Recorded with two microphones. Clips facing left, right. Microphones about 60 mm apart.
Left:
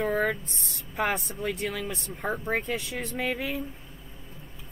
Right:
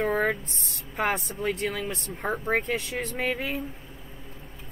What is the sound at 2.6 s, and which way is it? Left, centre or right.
Speech, right.